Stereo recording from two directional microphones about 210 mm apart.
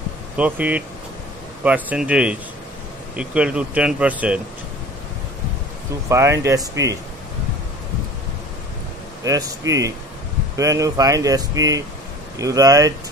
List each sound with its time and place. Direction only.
0.4 s speech: 5° right (ahead or behind)
6.0 s speech: 15° right (ahead or behind)
9.2 s speech: 15° right (ahead or behind)